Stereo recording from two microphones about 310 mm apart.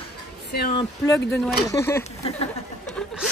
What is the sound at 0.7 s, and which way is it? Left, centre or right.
Speech, centre.